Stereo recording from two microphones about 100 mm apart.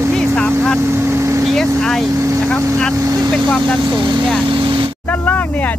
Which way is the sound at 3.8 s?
45° right (ahead or behind).